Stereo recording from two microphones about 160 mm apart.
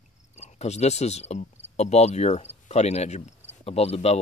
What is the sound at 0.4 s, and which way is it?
Speech, 45° left (ahead or behind).